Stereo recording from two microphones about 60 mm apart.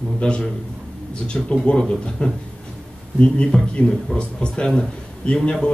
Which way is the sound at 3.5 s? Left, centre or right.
Centre.